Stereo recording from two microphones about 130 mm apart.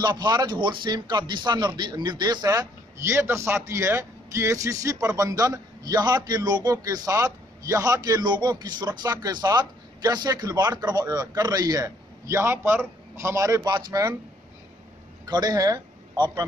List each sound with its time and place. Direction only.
0.0 s speech: 35° right (ahead or behind)
15.2 s a man's voice: 30° right (ahead or behind)